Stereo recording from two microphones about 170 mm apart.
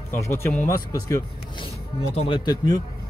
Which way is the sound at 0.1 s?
15° left (ahead or behind).